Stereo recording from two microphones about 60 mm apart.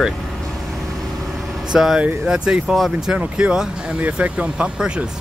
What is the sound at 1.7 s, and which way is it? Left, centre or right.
Speech, centre.